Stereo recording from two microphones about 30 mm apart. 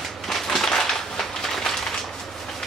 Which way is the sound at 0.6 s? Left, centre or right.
Centre.